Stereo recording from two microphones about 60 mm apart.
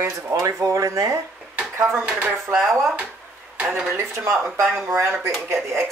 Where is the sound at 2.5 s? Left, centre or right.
Centre.